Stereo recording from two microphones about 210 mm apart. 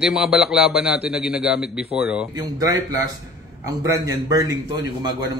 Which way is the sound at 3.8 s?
15° right (ahead or behind).